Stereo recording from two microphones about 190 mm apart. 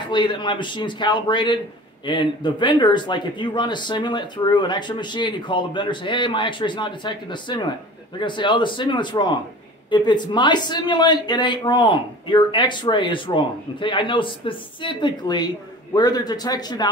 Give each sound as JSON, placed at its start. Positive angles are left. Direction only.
{"t": 0.1, "sound": "a man's voice", "side_deg": 25}